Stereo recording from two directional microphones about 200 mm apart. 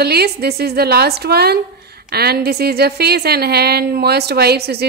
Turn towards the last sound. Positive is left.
turn(degrees=-55)  # may be behind; listen again after turning